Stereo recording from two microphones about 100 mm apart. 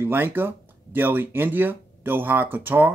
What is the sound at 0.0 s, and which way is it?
Speech, 20° right (ahead or behind).